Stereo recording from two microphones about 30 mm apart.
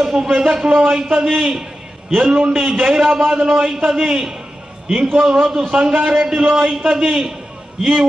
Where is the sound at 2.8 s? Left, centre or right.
Right.